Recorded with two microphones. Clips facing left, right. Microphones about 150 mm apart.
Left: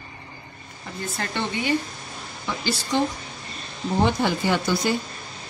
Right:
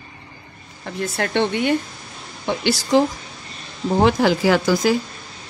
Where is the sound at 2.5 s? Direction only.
80° right.